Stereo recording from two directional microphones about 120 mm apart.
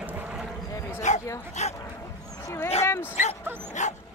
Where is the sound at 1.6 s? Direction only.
75° left (ahead or behind).